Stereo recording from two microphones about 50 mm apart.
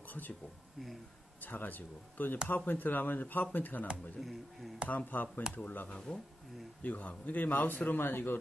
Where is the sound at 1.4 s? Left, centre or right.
Left.